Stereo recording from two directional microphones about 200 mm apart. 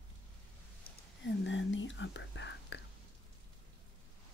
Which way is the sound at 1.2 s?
65° left (ahead or behind).